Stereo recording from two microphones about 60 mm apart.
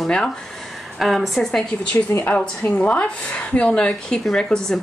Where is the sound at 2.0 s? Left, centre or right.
Left.